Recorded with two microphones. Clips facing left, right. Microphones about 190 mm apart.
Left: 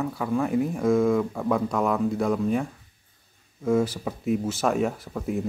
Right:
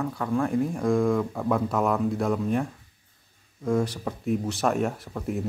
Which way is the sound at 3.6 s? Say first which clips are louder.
Left 2 dB; centre (ahead or behind).